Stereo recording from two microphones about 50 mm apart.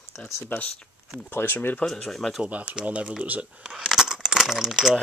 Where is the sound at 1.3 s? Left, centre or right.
Left.